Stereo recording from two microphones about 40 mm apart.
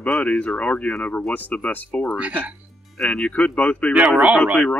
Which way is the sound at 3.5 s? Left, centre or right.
Left.